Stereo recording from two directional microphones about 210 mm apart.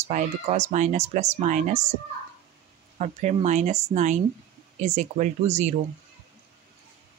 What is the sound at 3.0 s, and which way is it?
Speech, 30° right (ahead or behind).